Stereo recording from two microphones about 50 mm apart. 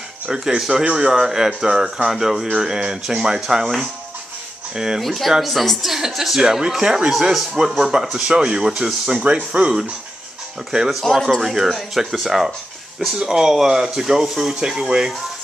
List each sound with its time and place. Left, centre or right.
0.6 s speech: centre
1.2 s speech: centre
5.0 s speech: centre
11.0 s speech: centre